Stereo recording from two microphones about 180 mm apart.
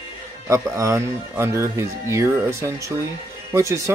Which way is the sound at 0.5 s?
15° right (ahead or behind).